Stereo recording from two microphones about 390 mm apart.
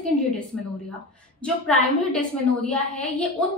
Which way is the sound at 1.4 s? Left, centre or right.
Centre.